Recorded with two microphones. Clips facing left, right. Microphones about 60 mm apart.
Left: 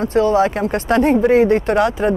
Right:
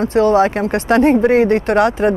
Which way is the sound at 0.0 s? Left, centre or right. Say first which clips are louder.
Right 2 dB; right.